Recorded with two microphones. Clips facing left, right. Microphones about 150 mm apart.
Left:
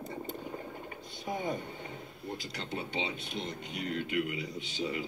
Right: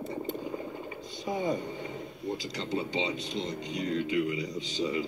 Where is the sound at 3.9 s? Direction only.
55° left (ahead or behind).